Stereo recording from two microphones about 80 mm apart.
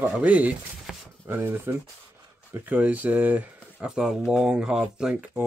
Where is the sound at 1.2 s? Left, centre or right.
Right.